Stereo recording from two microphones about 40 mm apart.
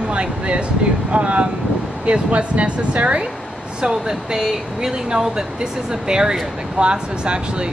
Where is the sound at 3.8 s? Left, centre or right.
Centre.